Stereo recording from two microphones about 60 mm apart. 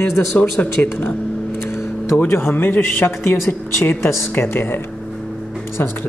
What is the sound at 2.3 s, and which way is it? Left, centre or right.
Speech, left.